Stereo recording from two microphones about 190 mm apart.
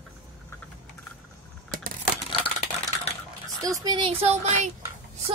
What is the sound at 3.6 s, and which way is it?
Speech, 20° right (ahead or behind).